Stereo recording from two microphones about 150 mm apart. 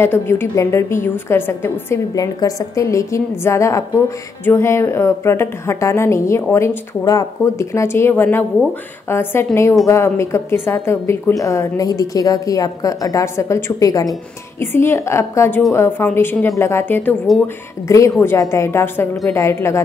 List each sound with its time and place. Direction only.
0.0 s a woman's voice: 15° left (ahead or behind)